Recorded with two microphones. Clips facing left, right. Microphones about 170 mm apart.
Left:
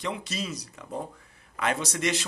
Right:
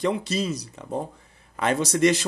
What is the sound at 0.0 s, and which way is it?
A man's voice, 30° right (ahead or behind).